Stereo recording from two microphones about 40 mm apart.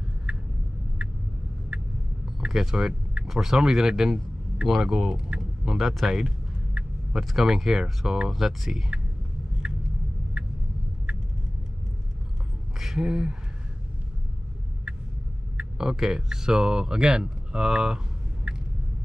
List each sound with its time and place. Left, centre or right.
0.3 s vehicle: right
1.7 s vehicle: right
2.4 s speech: centre
5.8 s speech: centre
9.6 s a sound: right
12.7 s speech: centre
15.5 s speech: centre